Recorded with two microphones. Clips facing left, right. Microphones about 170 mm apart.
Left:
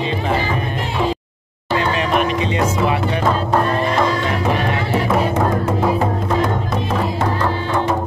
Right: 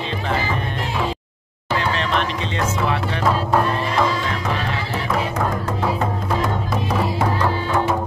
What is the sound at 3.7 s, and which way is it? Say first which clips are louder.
Music: left 4 dB; 55° left (ahead or behind).